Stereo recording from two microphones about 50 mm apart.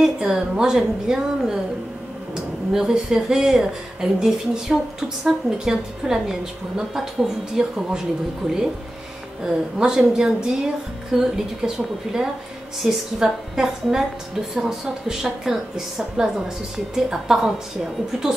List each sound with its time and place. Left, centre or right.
0.3 s a woman's voice: centre
9.4 s a woman's voice: centre